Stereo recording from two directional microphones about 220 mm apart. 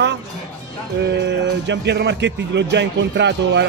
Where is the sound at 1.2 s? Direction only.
50° right (ahead or behind).